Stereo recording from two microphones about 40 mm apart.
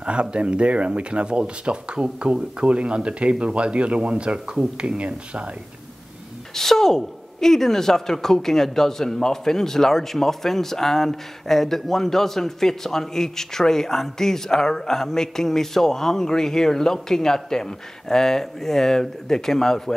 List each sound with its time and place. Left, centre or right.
0.0 s speech: right
6.5 s a woman's voice: centre